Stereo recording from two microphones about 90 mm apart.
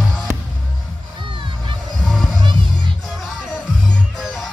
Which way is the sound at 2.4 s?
65° right (ahead or behind).